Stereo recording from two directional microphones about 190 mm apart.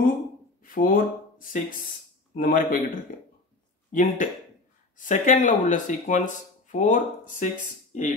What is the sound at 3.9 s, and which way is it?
Speech, 45° left (ahead or behind).